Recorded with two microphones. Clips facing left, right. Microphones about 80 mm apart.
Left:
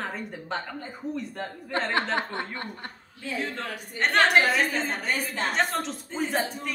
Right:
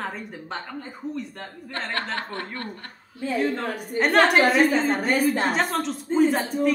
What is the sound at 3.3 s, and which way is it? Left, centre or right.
A woman's voice, centre.